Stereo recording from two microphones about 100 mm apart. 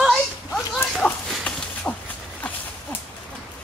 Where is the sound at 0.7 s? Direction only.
10° left (ahead or behind).